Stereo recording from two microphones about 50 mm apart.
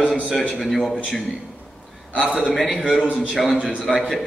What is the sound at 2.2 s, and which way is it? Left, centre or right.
Speech, centre.